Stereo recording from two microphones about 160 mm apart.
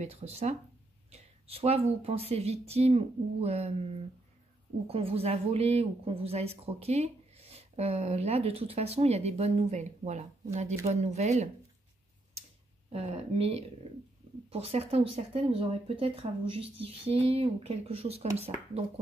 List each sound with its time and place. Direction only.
0.0 s a woman's voice: 40° right (ahead or behind)
12.9 s a woman's voice: 40° right (ahead or behind)